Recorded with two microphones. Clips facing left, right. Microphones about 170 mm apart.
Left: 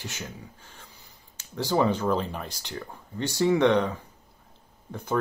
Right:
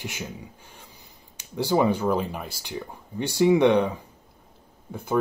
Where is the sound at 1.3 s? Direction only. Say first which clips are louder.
Right 3 dB; 15° right (ahead or behind).